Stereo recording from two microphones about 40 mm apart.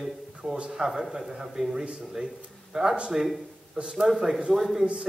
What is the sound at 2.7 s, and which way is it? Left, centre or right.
Speech, centre.